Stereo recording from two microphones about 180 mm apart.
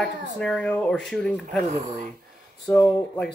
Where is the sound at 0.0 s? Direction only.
5° left (ahead or behind).